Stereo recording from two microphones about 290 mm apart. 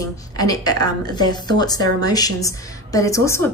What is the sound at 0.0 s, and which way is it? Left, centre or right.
A woman's voice, centre.